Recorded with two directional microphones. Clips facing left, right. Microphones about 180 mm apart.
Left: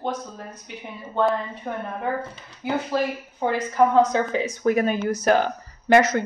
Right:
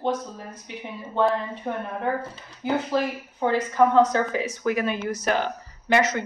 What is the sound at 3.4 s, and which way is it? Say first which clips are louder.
Speech: even; 10° left (ahead or behind).